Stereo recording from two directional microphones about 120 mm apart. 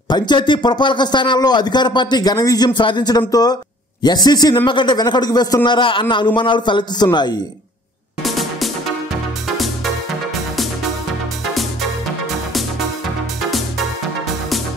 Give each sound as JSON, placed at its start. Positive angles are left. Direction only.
{"t": 0.1, "sound": "a man's voice", "side_deg": 40}
{"t": 8.2, "sound": "music", "side_deg": 0}